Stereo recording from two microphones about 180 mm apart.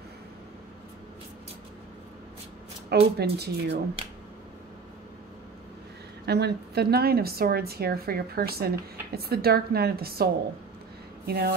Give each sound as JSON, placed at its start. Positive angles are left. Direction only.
{"t": 3.2, "sound": "a woman's voice", "side_deg": -65}
{"t": 6.2, "sound": "a woman's voice", "side_deg": -65}